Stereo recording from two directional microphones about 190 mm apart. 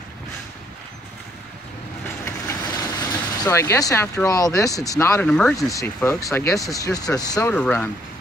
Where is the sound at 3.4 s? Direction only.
15° left (ahead or behind).